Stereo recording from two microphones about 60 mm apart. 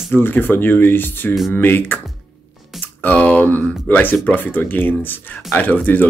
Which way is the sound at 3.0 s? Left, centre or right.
Left.